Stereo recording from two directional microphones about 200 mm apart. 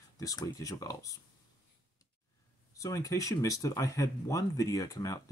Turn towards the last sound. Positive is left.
turn(degrees=15)  # may be behind; listen again after turning